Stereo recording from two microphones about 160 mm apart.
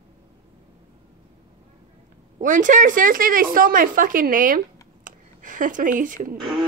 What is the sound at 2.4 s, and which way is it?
Speech, 55° right (ahead or behind).